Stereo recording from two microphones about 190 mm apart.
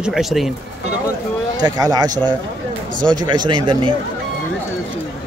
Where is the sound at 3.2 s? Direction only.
25° right (ahead or behind).